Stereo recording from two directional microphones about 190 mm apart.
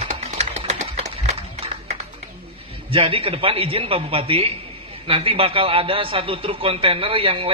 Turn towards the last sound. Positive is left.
turn(degrees=-30)  # may be behind; listen again after turning